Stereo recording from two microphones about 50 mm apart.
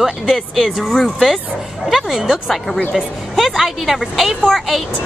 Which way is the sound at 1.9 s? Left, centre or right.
Centre.